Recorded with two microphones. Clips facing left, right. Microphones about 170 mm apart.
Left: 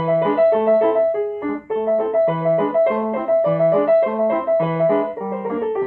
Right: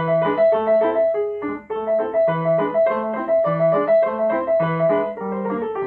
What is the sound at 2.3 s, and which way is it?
Music, 20° left (ahead or behind).